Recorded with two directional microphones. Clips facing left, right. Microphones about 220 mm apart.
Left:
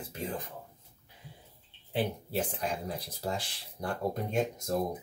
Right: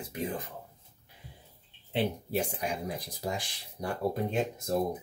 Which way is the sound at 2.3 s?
10° right (ahead or behind).